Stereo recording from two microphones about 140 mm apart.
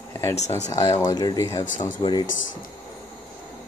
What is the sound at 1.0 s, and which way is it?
Speech, 30° left (ahead or behind).